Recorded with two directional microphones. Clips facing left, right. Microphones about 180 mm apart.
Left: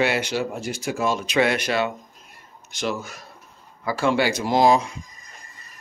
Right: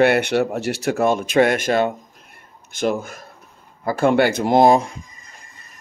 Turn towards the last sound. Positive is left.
turn(degrees=-55)  # may be behind; listen again after turning